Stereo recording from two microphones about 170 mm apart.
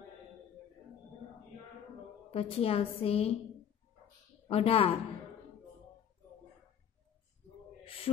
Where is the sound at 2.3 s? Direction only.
35° left (ahead or behind).